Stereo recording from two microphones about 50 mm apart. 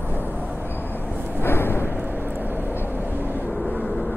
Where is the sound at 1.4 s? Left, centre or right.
Left.